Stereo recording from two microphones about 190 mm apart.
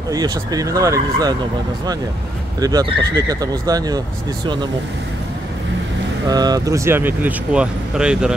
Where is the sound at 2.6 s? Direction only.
20° right (ahead or behind).